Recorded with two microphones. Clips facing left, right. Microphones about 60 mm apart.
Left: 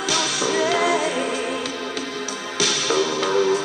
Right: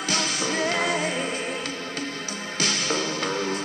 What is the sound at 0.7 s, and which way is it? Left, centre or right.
Music, left.